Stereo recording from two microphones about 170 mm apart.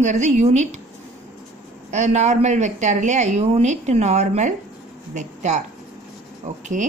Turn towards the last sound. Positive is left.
turn(degrees=-45)  # may be behind; listen again after turning